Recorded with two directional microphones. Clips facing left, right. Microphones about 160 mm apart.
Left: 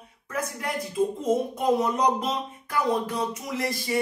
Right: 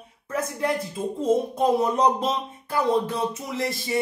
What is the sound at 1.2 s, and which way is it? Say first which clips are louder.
Speech: right 3 dB; 30° right (ahead or behind).